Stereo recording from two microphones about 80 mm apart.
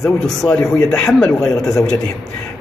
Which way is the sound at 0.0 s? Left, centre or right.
Centre.